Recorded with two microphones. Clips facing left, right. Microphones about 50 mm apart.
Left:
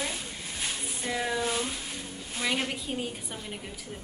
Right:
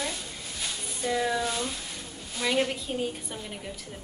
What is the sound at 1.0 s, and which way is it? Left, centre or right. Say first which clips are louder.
Speech: right 4 dB; centre.